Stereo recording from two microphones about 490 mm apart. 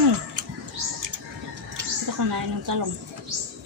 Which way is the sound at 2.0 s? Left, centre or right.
Right.